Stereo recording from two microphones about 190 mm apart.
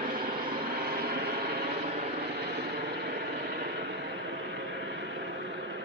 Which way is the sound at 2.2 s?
60° right (ahead or behind).